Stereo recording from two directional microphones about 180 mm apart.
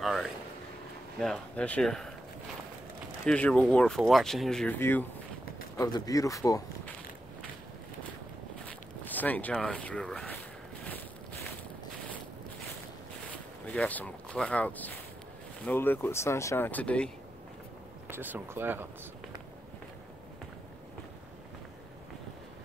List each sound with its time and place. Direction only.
0.0 s speech: centre (ahead or behind)
3.3 s speech: 5° left (ahead or behind)
8.6 s speech: 10° left (ahead or behind)
13.7 s speech: 10° left (ahead or behind)
18.1 s speech: 10° right (ahead or behind)